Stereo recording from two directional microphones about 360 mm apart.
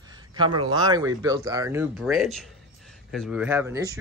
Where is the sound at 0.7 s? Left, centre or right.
Centre.